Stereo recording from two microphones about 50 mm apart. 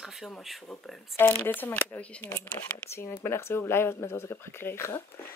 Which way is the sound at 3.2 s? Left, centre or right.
Left.